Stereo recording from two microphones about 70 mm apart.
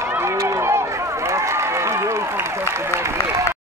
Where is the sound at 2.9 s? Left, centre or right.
Right.